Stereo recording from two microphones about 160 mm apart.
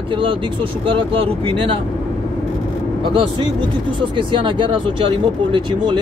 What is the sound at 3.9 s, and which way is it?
Speech, 30° right (ahead or behind).